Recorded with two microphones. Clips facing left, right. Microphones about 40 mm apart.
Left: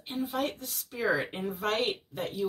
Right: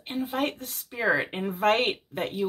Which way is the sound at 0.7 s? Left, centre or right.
Right.